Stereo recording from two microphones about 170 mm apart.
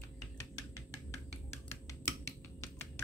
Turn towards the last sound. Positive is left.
turn(degrees=15)  # may be behind; listen again after turning